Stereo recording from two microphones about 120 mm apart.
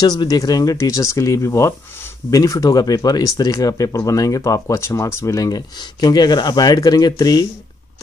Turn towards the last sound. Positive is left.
turn(degrees=35)  # may be behind; listen again after turning